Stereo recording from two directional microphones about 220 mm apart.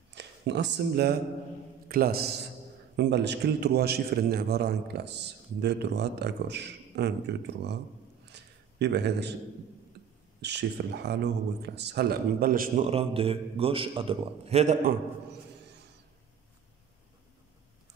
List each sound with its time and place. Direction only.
0.1 s a man's voice: 50° right (ahead or behind)
8.3 s a sound: 50° right (ahead or behind)
10.4 s a man's voice: 50° right (ahead or behind)
12.9 s a man's voice: 25° right (ahead or behind)